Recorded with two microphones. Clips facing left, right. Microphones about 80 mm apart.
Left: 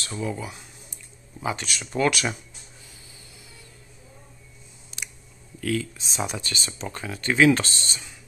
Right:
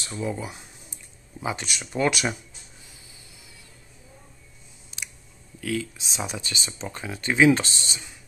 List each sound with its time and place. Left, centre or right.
0.2 s a sound: centre
1.4 s speech: centre
4.9 s chewing: centre
5.6 s speech: centre
6.4 s speech: centre